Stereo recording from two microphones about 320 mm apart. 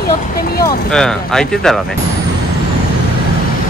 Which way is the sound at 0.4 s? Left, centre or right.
Left.